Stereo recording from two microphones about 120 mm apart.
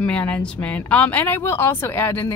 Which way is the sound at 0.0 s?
10° left (ahead or behind).